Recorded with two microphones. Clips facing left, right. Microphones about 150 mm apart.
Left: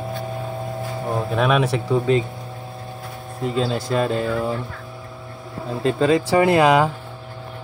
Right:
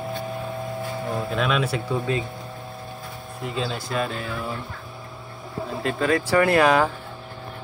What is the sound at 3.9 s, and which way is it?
Speech, 35° left (ahead or behind).